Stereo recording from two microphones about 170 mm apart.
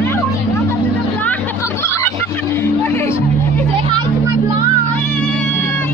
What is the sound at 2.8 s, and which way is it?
Music, 15° left (ahead or behind).